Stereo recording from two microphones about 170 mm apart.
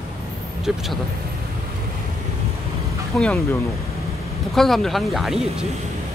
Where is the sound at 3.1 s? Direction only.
5° left (ahead or behind).